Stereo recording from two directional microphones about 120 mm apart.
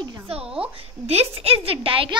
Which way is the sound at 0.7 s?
55° right (ahead or behind).